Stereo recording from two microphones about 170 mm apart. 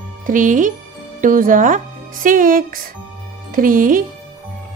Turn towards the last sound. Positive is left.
turn(degrees=-55)  # may be behind; listen again after turning